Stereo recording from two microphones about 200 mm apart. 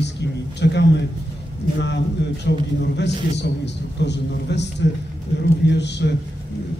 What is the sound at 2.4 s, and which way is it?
A man's voice, 60° left (ahead or behind).